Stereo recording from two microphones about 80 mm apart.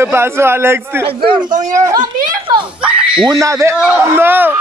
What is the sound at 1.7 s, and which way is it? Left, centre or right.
Speech, right.